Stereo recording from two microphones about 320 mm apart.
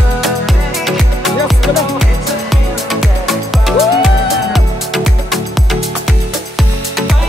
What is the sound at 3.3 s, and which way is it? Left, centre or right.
Music, centre.